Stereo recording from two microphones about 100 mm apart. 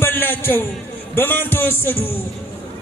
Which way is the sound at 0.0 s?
20° left (ahead or behind).